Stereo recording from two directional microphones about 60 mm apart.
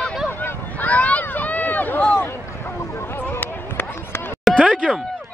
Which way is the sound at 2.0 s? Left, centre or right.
Centre.